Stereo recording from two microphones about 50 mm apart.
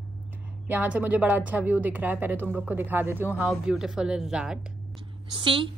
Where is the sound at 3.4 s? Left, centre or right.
Centre.